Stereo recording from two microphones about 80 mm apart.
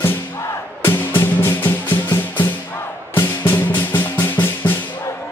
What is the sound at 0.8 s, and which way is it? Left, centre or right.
Music, left.